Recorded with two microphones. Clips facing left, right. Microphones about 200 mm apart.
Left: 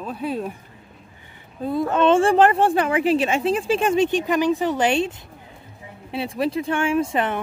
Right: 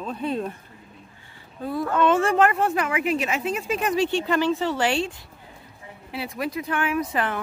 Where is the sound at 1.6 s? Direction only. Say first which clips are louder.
Left 3 dB; 25° left (ahead or behind).